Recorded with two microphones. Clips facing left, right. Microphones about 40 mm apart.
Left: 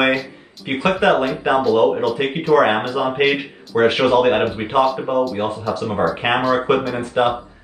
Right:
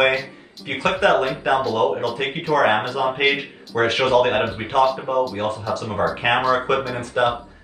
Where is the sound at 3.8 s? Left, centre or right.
Left.